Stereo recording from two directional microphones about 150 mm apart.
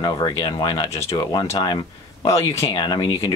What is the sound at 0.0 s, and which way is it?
Speech, 30° left (ahead or behind).